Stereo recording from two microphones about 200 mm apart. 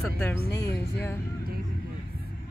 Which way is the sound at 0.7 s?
10° left (ahead or behind).